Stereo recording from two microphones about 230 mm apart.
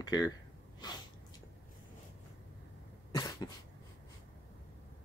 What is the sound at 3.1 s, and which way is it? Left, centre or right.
Cough, centre.